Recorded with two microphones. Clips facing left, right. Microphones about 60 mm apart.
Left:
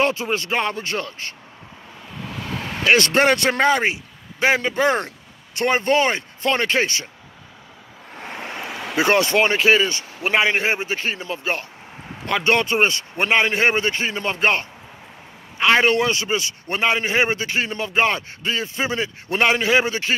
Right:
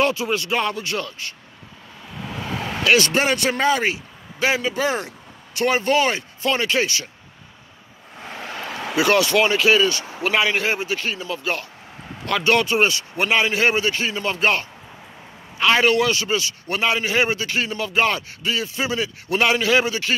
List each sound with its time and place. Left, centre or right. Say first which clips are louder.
0.0 s a man's voice: even; left
2.8 s speech: left 1 dB; left
3.1 s a man's voice: left 3 dB; left
3.8 s a sound: left 1 dB; left
4.6 s speech: left 3 dB; left
8.1 s vehicle: left 1 dB; left
8.5 s vehicle: even; centre
8.9 s a man's voice: even; left